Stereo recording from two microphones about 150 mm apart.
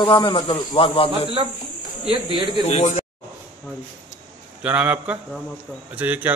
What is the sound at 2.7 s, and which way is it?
Speech, 50° left (ahead or behind).